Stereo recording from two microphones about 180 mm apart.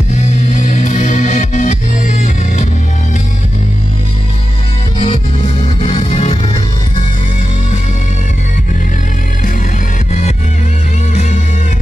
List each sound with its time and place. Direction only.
0.1 s music: 40° left (ahead or behind)
4.9 s music: 30° left (ahead or behind)
5.4 s music: 40° left (ahead or behind)